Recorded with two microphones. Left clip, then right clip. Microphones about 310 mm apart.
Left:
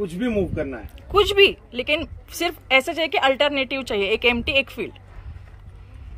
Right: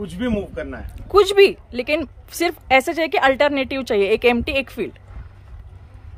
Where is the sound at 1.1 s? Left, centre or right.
Centre.